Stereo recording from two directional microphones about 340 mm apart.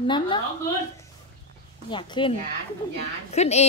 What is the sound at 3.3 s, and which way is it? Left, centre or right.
Speech, centre.